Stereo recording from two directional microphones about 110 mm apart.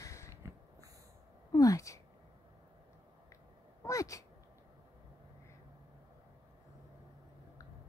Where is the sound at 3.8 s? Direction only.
30° left (ahead or behind).